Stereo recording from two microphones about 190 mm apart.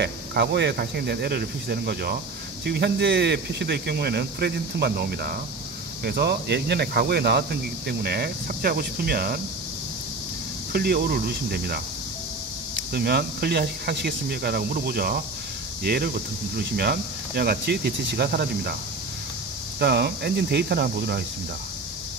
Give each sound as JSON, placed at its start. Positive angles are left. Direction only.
{"t": 0.0, "sound": "speech", "side_deg": -60}
{"t": 10.7, "sound": "speech", "side_deg": -55}
{"t": 12.9, "sound": "speech", "side_deg": -55}
{"t": 19.8, "sound": "speech", "side_deg": -60}